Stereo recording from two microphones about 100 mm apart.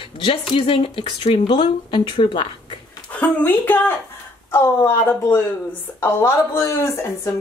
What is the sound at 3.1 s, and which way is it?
A woman's voice, 15° left (ahead or behind).